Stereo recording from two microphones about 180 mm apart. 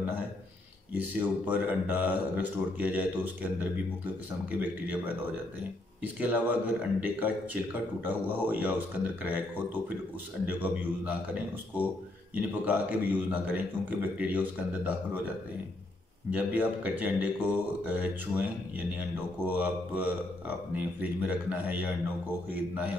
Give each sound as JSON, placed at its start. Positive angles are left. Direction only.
{"t": 0.9, "sound": "speech", "side_deg": -10}
{"t": 6.1, "sound": "speech", "side_deg": -10}
{"t": 10.4, "sound": "speech", "side_deg": -10}
{"t": 12.4, "sound": "speech", "side_deg": -10}
{"t": 16.3, "sound": "speech", "side_deg": -10}